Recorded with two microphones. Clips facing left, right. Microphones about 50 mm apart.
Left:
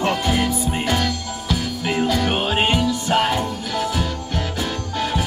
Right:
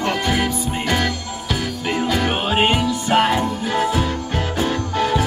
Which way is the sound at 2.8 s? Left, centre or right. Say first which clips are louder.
Right 2 dB; right.